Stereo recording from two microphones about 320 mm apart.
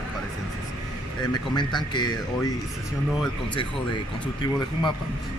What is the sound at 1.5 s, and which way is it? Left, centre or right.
Speech, centre.